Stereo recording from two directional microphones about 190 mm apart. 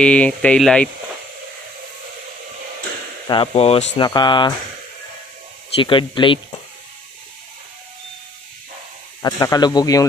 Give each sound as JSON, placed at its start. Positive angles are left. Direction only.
{"t": 0.0, "sound": "speech", "side_deg": 5}
{"t": 3.3, "sound": "speech", "side_deg": 30}
{"t": 4.0, "sound": "speech", "side_deg": 20}
{"t": 5.8, "sound": "speech", "side_deg": 25}
{"t": 9.2, "sound": "speech", "side_deg": 20}